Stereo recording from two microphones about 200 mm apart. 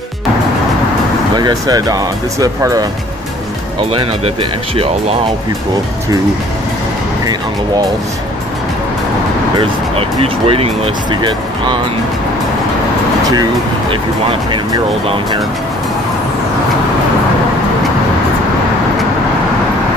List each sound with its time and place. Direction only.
1.3 s speech: 20° right (ahead or behind)
3.9 s speech: 25° right (ahead or behind)
9.6 s speech: 25° right (ahead or behind)
13.3 s speech: 20° right (ahead or behind)